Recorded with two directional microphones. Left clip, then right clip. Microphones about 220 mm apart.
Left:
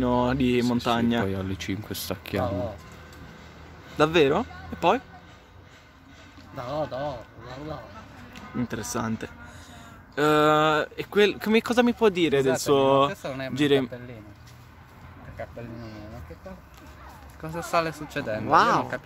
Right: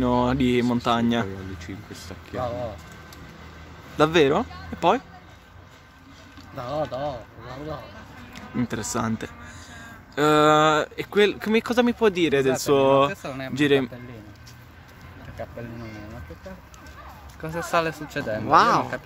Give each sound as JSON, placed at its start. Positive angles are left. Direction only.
{"t": 0.0, "sound": "speech", "side_deg": -5}
{"t": 1.2, "sound": "speech", "side_deg": 45}
{"t": 4.0, "sound": "speech", "side_deg": 0}
{"t": 6.5, "sound": "speech", "side_deg": 5}
{"t": 8.4, "sound": "speech", "side_deg": -10}
{"t": 13.1, "sound": "speech", "side_deg": 20}
{"t": 13.6, "sound": "speech", "side_deg": 0}
{"t": 17.4, "sound": "speech", "side_deg": -5}